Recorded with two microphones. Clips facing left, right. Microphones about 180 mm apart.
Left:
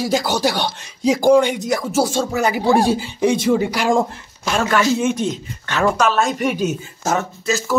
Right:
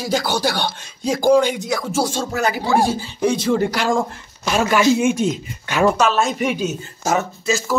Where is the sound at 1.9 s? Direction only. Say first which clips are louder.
Left 3 dB; 10° left (ahead or behind).